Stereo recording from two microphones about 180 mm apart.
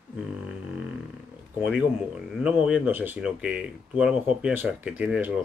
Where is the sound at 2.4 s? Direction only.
5° right (ahead or behind).